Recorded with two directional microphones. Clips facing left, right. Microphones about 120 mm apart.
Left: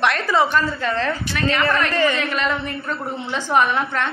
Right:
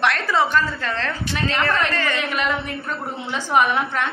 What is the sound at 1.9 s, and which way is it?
Speech, 15° left (ahead or behind).